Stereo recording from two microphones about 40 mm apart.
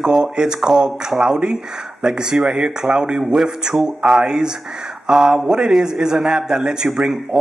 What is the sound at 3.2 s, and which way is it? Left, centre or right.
Speech, centre.